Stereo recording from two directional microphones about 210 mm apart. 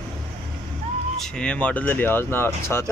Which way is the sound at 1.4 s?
5° left (ahead or behind).